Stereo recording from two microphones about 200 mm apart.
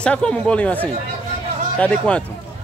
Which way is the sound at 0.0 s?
5° left (ahead or behind).